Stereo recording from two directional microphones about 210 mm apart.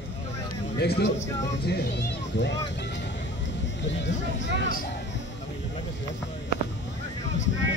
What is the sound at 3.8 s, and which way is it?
Speech, 55° left (ahead or behind).